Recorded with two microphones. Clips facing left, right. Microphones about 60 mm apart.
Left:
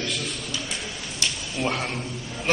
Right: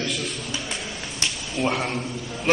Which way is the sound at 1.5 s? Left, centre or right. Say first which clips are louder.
Right 4 dB; centre.